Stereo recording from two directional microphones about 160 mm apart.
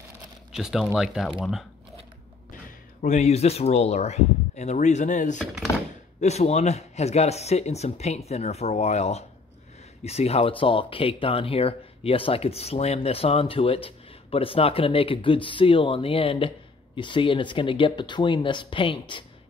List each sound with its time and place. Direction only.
0.5 s speech: centre (ahead or behind)
3.0 s speech: 45° left (ahead or behind)
5.4 s a sound: centre (ahead or behind)
6.2 s speech: 45° left (ahead or behind)